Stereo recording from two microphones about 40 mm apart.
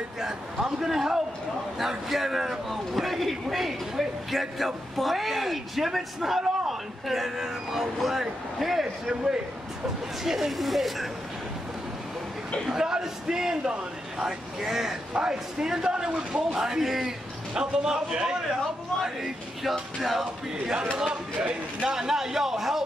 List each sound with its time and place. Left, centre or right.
0.2 s a man's voice: centre
10.2 s a man's voice: centre
12.6 s a man's voice: centre
16.5 s a man's voice: centre
17.6 s a man's voice: centre
19.0 s a man's voice: centre
21.0 s a man's voice: centre